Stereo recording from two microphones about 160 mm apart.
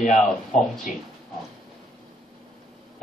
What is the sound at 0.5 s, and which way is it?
Speech, 5° left (ahead or behind).